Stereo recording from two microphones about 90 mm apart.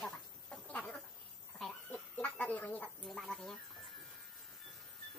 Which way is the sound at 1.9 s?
15° left (ahead or behind).